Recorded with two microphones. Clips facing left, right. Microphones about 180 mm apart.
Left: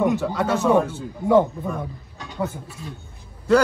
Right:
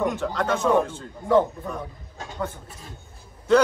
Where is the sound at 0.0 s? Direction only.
10° left (ahead or behind).